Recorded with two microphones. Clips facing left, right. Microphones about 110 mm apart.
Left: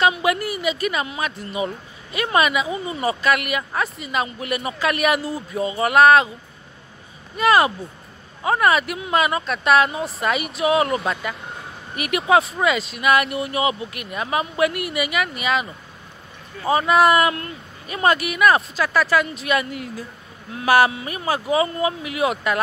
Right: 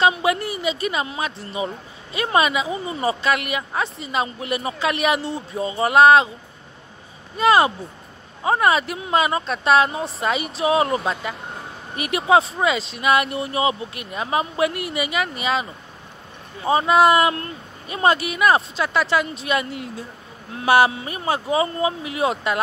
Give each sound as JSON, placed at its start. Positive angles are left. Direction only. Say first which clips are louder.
{"t": 0.0, "sound": "a woman's voice", "louder": "even", "side_deg": -30}
{"t": 7.3, "sound": "a woman's voice", "louder": "right 1 dB", "side_deg": -30}